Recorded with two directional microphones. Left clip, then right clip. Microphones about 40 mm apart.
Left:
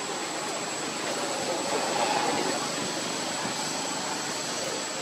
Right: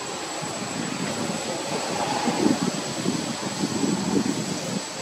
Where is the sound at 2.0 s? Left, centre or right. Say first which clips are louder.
Right 2 dB; centre.